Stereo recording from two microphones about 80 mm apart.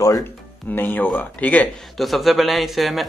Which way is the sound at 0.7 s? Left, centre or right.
Left.